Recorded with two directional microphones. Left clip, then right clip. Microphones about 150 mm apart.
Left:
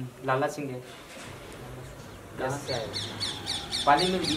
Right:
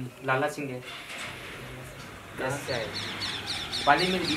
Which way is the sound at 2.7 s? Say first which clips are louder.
Right 1 dB; 25° left (ahead or behind).